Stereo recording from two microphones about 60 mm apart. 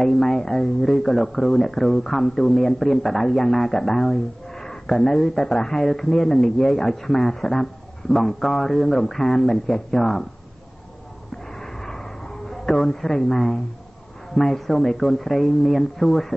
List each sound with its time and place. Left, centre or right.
0.0 s speech: centre
12.4 s speech: centre